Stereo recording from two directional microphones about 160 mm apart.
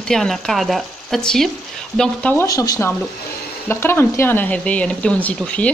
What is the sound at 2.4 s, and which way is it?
Speech, 20° left (ahead or behind).